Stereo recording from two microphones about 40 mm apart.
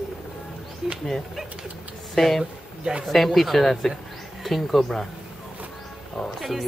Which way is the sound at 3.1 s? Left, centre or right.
Centre.